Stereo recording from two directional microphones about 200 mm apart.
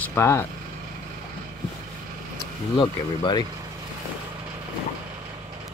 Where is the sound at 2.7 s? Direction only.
25° left (ahead or behind).